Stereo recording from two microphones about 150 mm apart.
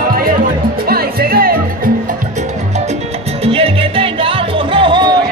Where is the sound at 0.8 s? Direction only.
85° right.